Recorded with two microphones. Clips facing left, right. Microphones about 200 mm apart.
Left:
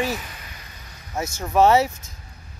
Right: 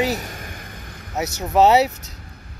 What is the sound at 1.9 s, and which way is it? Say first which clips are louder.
Vehicle: right 4 dB; 70° right (ahead or behind).